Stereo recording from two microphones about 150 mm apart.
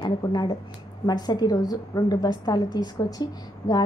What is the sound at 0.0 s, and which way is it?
A woman's voice, 30° left (ahead or behind).